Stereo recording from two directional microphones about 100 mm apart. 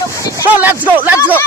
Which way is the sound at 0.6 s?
15° right (ahead or behind).